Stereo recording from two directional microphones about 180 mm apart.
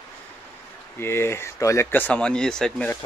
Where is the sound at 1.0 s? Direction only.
15° left (ahead or behind).